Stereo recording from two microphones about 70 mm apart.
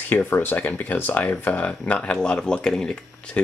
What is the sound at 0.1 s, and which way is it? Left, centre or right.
Speech, left.